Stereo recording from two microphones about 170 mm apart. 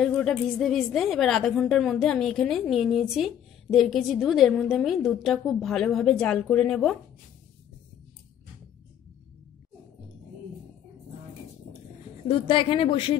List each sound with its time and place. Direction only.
0.0 s a woman's voice: centre (ahead or behind)
12.3 s speech: 30° left (ahead or behind)